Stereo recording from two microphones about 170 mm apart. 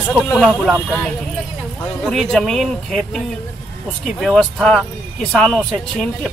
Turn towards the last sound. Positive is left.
turn(degrees=0)  # may be behind; listen again after turning